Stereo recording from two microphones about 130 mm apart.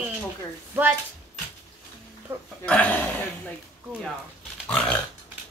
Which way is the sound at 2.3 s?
15° right (ahead or behind).